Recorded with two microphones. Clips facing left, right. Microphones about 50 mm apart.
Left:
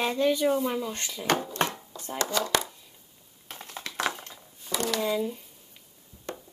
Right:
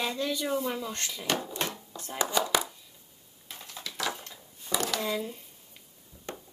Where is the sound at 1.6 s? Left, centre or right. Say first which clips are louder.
Left 5 dB; left.